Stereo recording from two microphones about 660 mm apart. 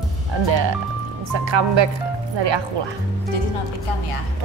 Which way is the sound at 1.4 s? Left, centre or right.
Right.